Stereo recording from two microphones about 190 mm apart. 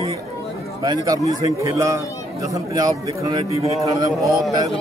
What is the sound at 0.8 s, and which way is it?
A man's voice, 20° right (ahead or behind).